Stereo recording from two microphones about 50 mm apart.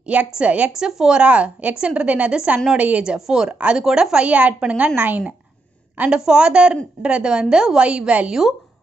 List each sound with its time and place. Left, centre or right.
0.0 s a woman's voice: right
0.7 s a woman's voice: centre
4.9 s a woman's voice: right
6.0 s a woman's voice: centre
8.3 s speech: centre